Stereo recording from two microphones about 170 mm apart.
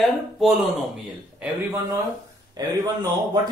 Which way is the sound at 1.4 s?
15° right (ahead or behind).